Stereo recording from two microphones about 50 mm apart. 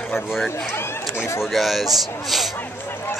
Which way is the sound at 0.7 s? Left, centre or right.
Left.